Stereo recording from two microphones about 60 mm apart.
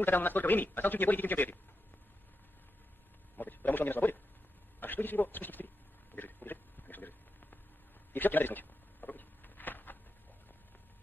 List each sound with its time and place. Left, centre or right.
0.0 s a man's voice: left
3.3 s a man's voice: left
6.1 s a sound: left